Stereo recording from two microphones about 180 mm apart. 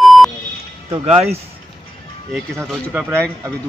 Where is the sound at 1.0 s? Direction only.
35° right (ahead or behind).